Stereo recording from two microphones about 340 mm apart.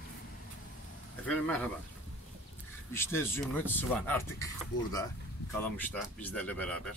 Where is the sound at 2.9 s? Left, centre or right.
Centre.